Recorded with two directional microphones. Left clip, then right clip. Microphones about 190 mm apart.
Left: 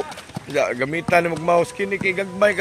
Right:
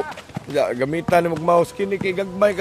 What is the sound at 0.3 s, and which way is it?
A man's voice, 10° right (ahead or behind).